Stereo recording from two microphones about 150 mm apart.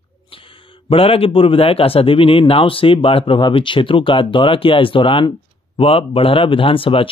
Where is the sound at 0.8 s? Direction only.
40° left (ahead or behind).